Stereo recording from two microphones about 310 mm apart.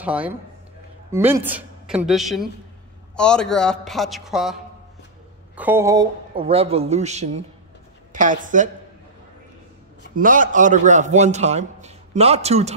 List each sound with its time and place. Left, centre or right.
0.0 s a man's voice: centre
5.6 s a man's voice: centre; by 8.6 s right
10.1 s a man's voice: right